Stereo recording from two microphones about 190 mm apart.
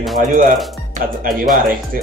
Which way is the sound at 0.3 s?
50° right (ahead or behind).